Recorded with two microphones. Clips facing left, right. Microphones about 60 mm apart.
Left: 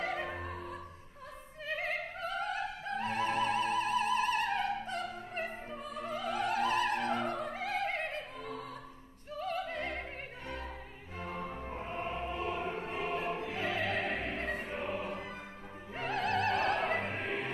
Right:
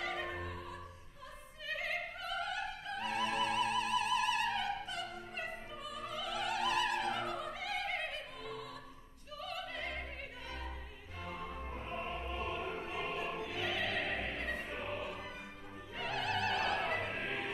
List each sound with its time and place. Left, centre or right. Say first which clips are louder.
0.0 s opera: left 3 dB; left
11.1 s music: left 4 dB; left
11.5 s music: left 3 dB; centre
12.4 s music: left 2 dB; left
13.1 s opera: left 4 dB; left
14.2 s music: left 3 dB; left
16.0 s opera: left 4 dB; left
16.8 s opera: left 4 dB; left